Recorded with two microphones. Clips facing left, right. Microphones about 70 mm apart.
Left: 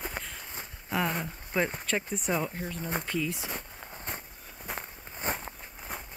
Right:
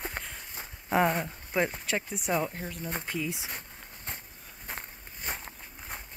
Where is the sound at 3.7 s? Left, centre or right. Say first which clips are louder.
Left 3 dB; centre.